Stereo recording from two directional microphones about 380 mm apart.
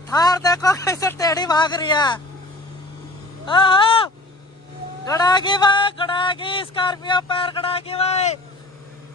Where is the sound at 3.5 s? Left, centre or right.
Centre.